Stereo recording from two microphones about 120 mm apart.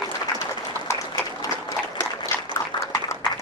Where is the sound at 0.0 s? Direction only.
30° left (ahead or behind).